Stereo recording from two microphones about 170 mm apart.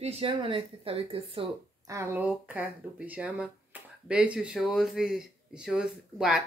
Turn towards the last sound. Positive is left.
turn(degrees=-5)  # may be behind; listen again after turning